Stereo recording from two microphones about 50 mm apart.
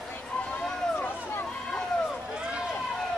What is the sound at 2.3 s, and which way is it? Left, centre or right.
Run, centre.